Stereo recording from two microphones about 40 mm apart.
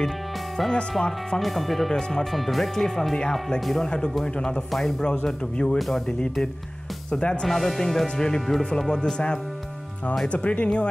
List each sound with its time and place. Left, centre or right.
1.4 s speech: centre
1.9 s speech: centre
2.3 s speech: centre; by 5.8 s left
5.8 s speech: centre
7.1 s speech: left
7.4 s speech: centre
10.2 s speech: left